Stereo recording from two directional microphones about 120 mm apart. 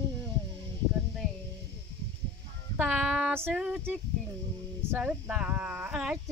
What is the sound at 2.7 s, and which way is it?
Speech, 10° right (ahead or behind).